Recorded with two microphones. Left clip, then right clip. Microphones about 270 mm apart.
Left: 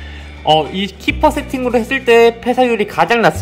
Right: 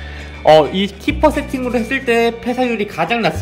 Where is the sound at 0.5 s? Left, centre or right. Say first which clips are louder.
Right 3 dB; centre.